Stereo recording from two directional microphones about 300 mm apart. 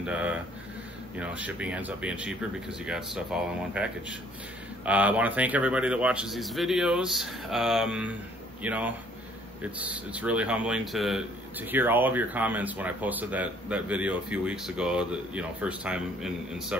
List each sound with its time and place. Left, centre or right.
0.0 s speech: centre